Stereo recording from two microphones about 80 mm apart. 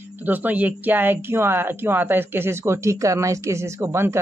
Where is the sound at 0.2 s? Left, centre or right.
Right.